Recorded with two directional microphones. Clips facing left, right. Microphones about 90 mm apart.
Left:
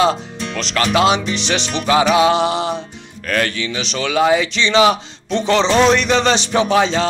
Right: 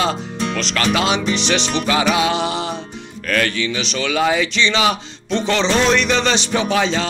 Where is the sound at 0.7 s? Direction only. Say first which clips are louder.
Left 4 dB; 30° left (ahead or behind).